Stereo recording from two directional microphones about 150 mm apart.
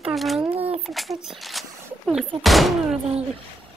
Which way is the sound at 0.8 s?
Centre (ahead or behind).